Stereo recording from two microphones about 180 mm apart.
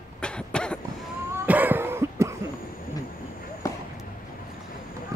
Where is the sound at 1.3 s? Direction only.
10° right (ahead or behind).